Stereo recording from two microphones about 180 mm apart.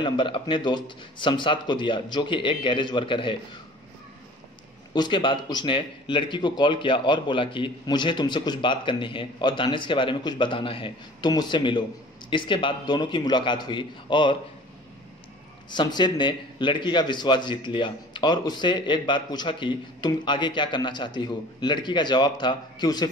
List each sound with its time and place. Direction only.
0.0 s a man's voice: 25° left (ahead or behind)
4.9 s a man's voice: 25° left (ahead or behind)
15.7 s a man's voice: 25° left (ahead or behind)